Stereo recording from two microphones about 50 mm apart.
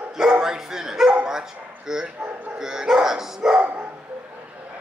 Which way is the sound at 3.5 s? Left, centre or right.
Right.